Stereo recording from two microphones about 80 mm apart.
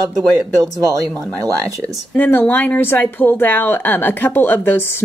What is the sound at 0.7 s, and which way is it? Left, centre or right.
Speech, right.